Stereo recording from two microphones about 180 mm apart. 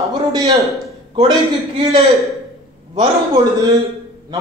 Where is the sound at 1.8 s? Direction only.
30° right (ahead or behind).